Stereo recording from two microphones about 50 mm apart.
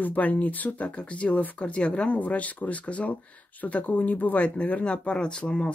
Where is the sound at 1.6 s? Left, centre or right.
Left.